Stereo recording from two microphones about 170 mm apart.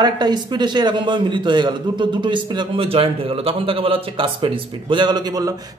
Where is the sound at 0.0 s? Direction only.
25° right (ahead or behind).